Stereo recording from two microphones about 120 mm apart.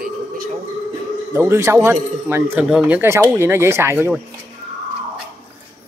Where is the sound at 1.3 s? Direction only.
20° right (ahead or behind).